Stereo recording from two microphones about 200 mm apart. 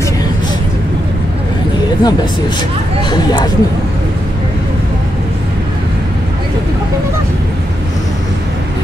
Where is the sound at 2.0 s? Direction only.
20° left (ahead or behind).